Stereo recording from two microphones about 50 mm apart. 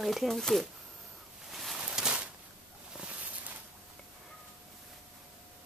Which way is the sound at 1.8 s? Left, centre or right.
Centre.